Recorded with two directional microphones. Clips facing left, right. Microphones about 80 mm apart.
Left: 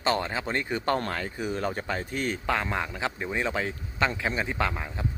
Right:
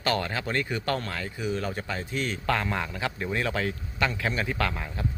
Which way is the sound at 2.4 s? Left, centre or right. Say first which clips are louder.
Right 2 dB; centre.